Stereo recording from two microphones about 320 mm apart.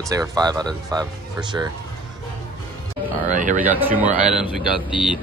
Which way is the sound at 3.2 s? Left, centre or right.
Right.